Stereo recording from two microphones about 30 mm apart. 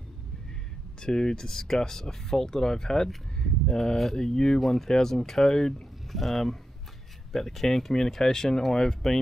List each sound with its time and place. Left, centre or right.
1.0 s speech: left
3.4 s a sound: centre
3.9 s speech: centre
4.6 s speech: centre
4.8 s speech: centre
6.1 s speech: centre